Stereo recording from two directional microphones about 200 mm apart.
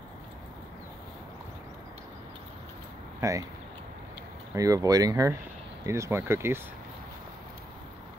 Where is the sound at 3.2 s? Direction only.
15° right (ahead or behind).